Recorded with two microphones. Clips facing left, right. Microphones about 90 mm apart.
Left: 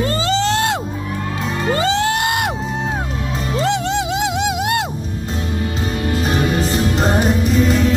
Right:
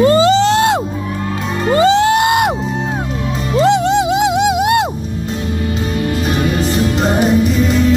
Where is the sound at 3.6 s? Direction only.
15° right (ahead or behind).